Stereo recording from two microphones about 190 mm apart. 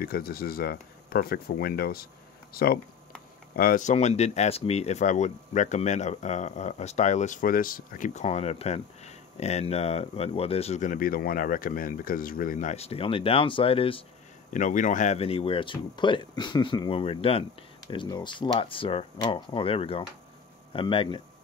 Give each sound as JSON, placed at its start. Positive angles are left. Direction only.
{"t": 0.0, "sound": "speech", "side_deg": 50}
{"t": 14.5, "sound": "speech", "side_deg": 40}